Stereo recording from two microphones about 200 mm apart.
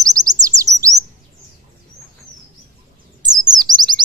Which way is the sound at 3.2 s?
20° right (ahead or behind).